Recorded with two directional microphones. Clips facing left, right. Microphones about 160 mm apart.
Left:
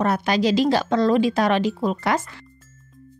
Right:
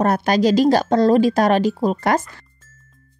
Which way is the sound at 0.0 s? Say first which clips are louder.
Right 4 dB; 45° right (ahead or behind).